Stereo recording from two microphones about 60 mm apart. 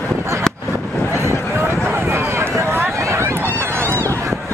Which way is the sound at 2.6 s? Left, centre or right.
Right.